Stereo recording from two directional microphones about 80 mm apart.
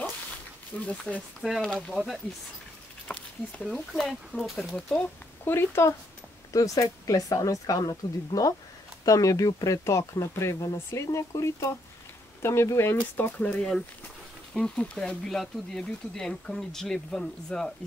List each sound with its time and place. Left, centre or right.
0.8 s speech: centre
1.4 s speech: centre
3.1 s a sound: centre
4.0 s speech: centre
4.7 s speech: centre
5.4 s speech: left
6.5 s speech: left; by 17.7 s centre